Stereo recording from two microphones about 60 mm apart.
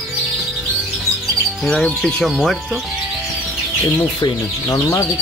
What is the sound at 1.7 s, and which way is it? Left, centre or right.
Speech, centre.